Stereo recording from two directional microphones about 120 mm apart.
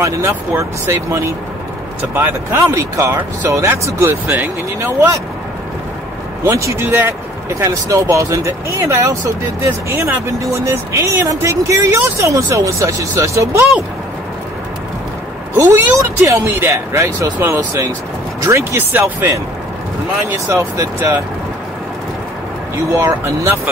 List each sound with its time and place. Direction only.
0.0 s speech: 25° right (ahead or behind)
6.4 s speech: 25° right (ahead or behind)
15.5 s speech: 20° right (ahead or behind)
22.8 s speech: 25° right (ahead or behind)